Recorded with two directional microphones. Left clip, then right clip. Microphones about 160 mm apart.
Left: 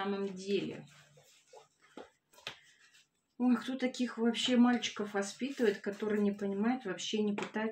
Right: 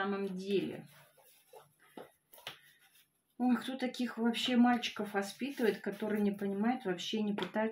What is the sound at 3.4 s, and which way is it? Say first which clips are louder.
Speech: left 1 dB; 25° right (ahead or behind).